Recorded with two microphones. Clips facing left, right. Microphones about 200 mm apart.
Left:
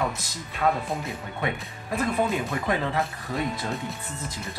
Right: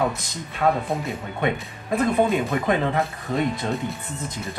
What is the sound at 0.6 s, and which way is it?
Speech, 45° right (ahead or behind).